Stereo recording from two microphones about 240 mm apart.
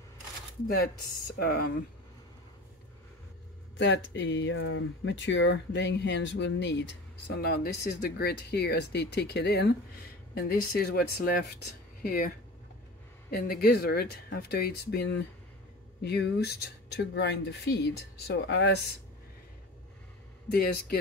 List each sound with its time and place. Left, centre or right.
1.2 s speech: left
3.7 s speech: left
13.3 s speech: left
20.4 s speech: left